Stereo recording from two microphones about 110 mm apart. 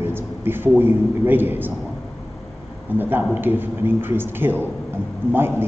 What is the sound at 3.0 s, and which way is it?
A man's voice, 15° right (ahead or behind).